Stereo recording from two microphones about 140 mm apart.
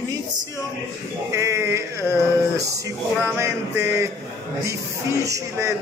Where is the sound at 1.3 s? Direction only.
20° right (ahead or behind).